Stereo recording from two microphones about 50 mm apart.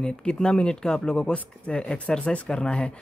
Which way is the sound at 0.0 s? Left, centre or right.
Centre.